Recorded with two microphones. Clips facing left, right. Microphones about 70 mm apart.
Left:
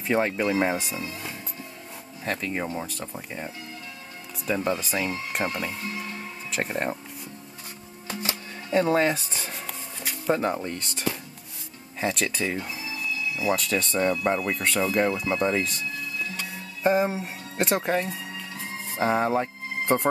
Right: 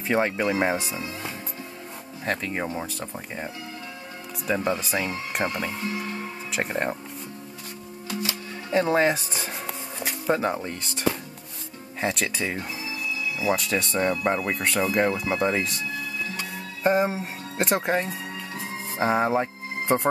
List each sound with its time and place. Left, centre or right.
0.0 s speech: centre
3.0 s speech: centre
6.5 s speech: centre
8.1 s music: left
8.7 s speech: centre
9.5 s music: right
10.2 s speech: centre
13.6 s speech: centre
16.3 s music: centre
18.9 s speech: centre